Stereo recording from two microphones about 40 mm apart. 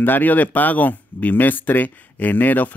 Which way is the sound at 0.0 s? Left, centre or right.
Left.